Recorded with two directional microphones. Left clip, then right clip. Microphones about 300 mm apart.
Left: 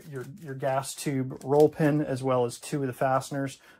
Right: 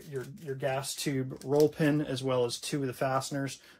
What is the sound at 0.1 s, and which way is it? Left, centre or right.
Speech, centre.